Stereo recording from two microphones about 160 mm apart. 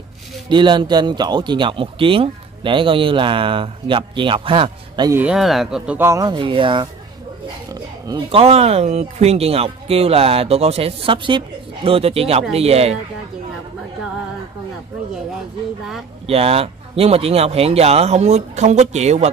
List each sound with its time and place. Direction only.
0.5 s speech: 30° right (ahead or behind)
5.1 s speech: 5° right (ahead or behind)
5.9 s speech: 20° right (ahead or behind)
7.7 s dog: 25° right (ahead or behind)
8.4 s speech: 40° right (ahead or behind)
16.3 s speech: 40° right (ahead or behind)